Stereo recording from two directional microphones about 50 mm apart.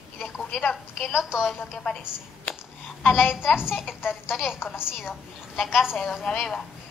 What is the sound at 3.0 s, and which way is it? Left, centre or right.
A child's voice, left.